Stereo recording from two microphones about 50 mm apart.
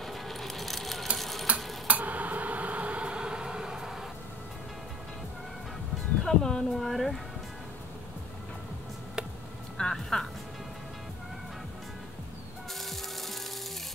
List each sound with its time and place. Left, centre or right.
0.0 s a sound: centre
1.1 s sewing machine: centre
1.9 s a sound: right; by 4.0 s centre
6.2 s speech: centre
9.8 s music: centre
12.8 s rattle: centre